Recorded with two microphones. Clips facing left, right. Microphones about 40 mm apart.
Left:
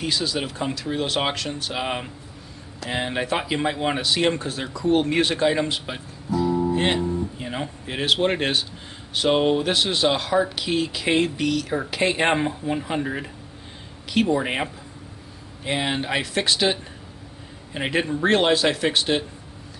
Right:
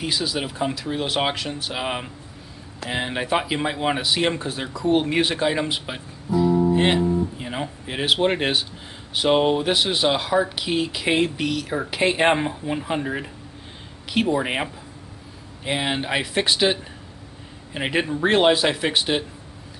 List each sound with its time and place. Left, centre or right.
0.0 s speech: centre